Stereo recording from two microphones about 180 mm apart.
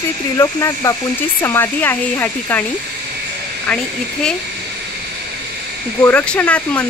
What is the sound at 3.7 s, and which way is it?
Speech, 5° left (ahead or behind).